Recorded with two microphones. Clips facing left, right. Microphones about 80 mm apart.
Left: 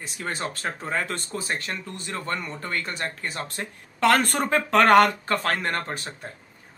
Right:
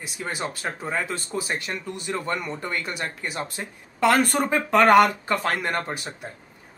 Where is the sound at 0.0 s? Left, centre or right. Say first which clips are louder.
Even; centre.